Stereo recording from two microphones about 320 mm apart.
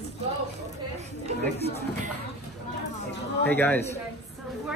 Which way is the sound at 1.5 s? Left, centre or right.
Centre.